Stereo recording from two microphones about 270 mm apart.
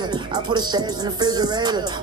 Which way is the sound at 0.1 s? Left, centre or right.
Centre.